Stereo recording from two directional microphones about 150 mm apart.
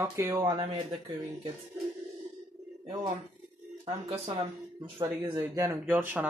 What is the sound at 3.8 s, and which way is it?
Speech, 40° right (ahead or behind).